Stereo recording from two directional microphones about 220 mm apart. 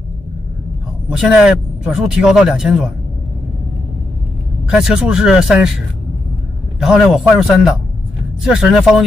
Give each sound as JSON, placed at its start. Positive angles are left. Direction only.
{"t": 1.1, "sound": "speech", "side_deg": -5}
{"t": 4.6, "sound": "speech", "side_deg": -5}
{"t": 6.8, "sound": "speech", "side_deg": 0}